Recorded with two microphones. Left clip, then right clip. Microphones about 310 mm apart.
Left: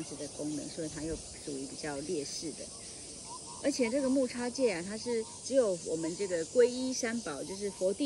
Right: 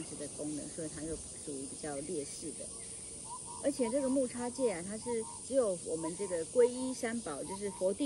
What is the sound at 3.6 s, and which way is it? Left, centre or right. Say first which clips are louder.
Speech: left 2 dB; left.